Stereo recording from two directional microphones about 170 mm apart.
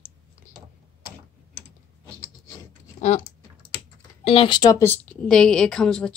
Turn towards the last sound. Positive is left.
turn(degrees=5)  # may be behind; listen again after turning